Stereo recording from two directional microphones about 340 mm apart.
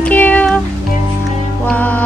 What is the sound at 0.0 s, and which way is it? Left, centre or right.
Music, centre.